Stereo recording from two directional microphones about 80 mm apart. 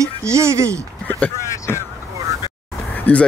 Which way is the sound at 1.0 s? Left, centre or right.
Centre.